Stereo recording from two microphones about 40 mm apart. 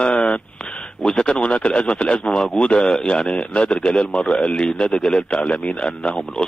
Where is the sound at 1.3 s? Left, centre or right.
Left.